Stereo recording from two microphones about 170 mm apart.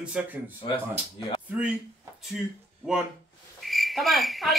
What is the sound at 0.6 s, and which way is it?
Speech, 30° left (ahead or behind).